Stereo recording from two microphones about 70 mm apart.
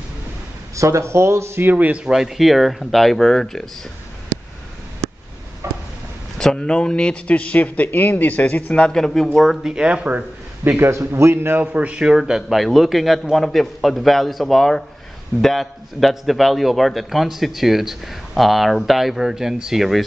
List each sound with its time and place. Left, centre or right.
0.7 s a man's voice: right
2.0 s a man's voice: centre
5.6 s a sound: right
6.3 s a man's voice: centre
8.9 s a man's voice: centre; by 10.8 s right
10.8 s a man's voice: right
11.6 s a man's voice: centre